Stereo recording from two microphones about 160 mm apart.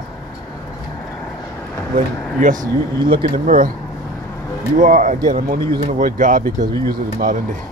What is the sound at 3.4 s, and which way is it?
Speech, 60° right (ahead or behind).